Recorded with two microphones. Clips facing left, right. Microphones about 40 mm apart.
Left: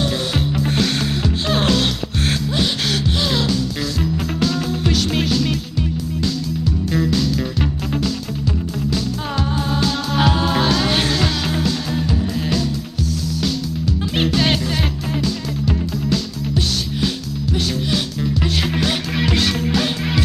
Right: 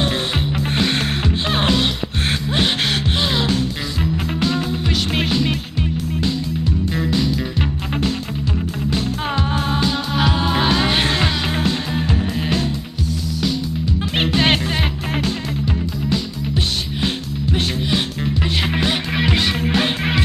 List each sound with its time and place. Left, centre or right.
0.0 s music: right
10.1 s music: centre; by 12.6 s right
14.1 s music: right
18.4 s music: right
19.7 s music: right